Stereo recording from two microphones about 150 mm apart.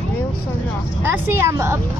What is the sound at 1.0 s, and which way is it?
Speech, 15° right (ahead or behind).